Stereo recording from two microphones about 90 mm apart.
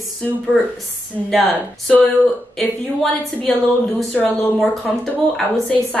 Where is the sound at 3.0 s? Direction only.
10° left (ahead or behind).